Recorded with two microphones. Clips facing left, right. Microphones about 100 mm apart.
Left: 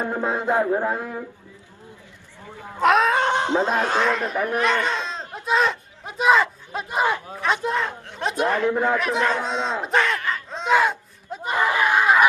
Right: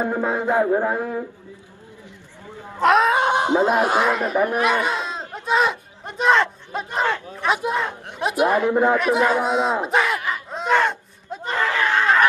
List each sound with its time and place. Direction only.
0.0 s a man's voice: 15° right (ahead or behind)
2.8 s speech: centre (ahead or behind)
7.3 s speech: 5° right (ahead or behind)
8.9 s speech: 5° right (ahead or behind)
9.8 s a sound: 5° right (ahead or behind)
10.7 s a sound: 5° left (ahead or behind)